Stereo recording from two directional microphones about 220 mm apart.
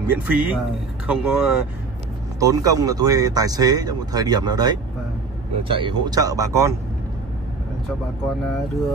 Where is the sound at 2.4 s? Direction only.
15° right (ahead or behind).